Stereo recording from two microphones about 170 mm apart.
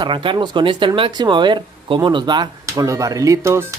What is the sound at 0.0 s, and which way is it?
Speech, 30° right (ahead or behind).